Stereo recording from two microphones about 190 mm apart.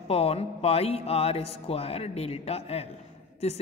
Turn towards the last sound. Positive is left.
turn(degrees=35)  # may be behind; listen again after turning